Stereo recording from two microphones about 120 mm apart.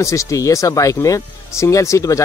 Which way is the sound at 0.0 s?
25° left (ahead or behind).